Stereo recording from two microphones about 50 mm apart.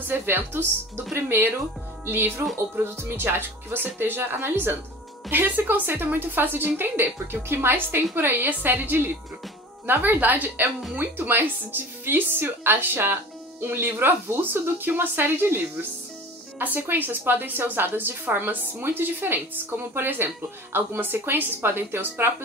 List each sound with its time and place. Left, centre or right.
0.1 s speech: right
2.0 s a woman's voice: right